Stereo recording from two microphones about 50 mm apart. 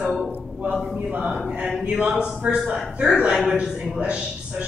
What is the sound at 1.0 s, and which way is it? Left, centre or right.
Speech, right.